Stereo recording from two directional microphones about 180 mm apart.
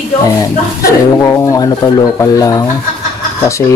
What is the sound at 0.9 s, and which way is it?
Speech, 15° left (ahead or behind).